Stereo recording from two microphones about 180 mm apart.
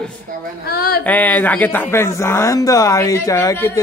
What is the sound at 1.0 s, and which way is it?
A man's voice, 10° left (ahead or behind).